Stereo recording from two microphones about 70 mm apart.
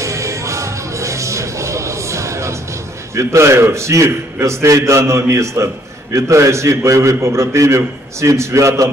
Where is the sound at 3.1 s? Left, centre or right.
Right.